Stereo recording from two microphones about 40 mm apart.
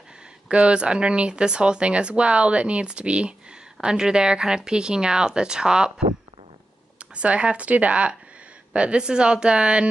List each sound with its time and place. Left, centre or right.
0.6 s speech: right
7.2 s speech: right